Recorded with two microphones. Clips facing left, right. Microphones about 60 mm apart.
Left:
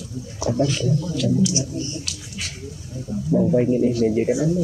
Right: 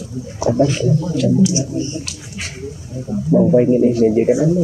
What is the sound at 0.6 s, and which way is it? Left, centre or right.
Speech, right.